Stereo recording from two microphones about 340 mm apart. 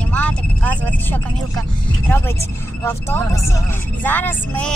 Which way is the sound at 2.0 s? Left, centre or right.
Centre.